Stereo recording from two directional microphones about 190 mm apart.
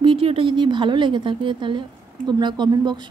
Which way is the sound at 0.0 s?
25° right (ahead or behind).